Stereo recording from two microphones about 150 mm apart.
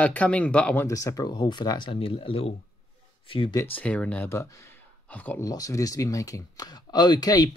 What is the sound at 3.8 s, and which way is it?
Speech, 10° left (ahead or behind).